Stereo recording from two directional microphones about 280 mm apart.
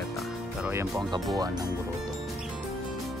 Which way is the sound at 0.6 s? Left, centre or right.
Centre.